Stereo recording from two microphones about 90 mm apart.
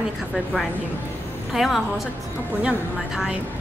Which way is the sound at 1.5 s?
Centre (ahead or behind).